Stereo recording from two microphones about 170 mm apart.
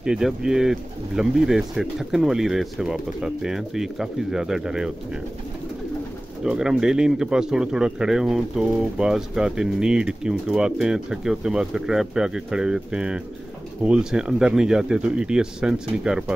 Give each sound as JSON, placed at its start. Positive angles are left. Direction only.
{"t": 0.0, "sound": "speech", "side_deg": -5}
{"t": 6.4, "sound": "speech", "side_deg": -5}